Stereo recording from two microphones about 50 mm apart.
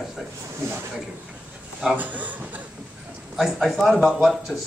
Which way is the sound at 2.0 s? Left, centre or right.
Right.